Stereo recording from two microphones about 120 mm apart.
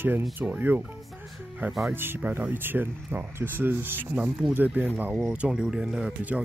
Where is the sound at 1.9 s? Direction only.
15° right (ahead or behind).